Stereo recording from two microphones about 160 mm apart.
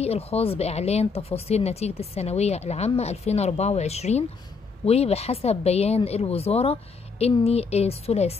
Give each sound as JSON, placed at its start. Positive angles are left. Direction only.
{"t": 0.0, "sound": "speech", "side_deg": 40}